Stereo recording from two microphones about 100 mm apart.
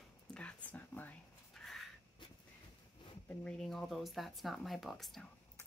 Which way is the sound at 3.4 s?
5° left (ahead or behind).